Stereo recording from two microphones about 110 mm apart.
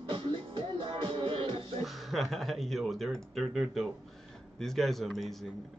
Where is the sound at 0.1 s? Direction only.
50° right (ahead or behind).